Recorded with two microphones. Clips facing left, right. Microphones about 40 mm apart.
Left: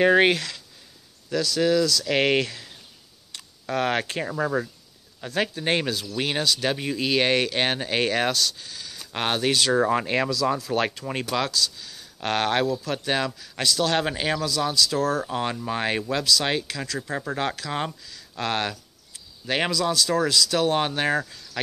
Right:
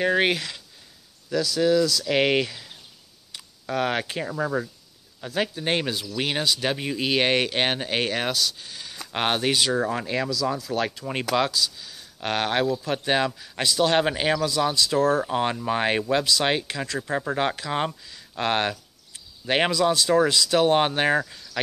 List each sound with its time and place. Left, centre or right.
1.3 s speech: centre
9.8 s speech: centre
11.3 s speech: centre
12.6 s speech: centre
15.2 s speech: centre